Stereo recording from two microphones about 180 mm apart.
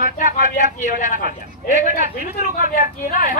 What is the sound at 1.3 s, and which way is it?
Speech, 45° right (ahead or behind).